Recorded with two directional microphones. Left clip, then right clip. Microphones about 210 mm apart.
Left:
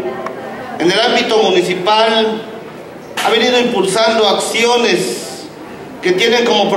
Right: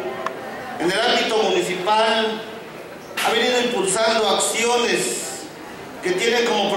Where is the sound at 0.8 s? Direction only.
5° right (ahead or behind).